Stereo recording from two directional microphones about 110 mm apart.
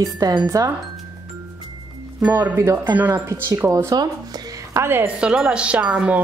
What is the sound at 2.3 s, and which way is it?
Speech, 20° right (ahead or behind).